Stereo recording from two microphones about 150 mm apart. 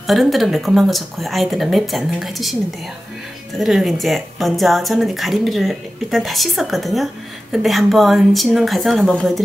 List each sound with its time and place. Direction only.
0.0 s speech: centre (ahead or behind)
3.5 s speech: centre (ahead or behind)